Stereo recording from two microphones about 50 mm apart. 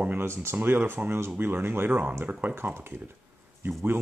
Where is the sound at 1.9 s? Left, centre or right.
Right.